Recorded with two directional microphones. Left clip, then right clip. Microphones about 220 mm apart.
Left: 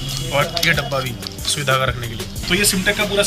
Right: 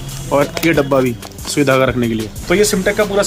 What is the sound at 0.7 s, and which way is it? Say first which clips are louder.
Speech: right 6 dB; 30° right (ahead or behind).